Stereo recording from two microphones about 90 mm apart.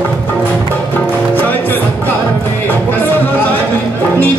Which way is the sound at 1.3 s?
20° left (ahead or behind).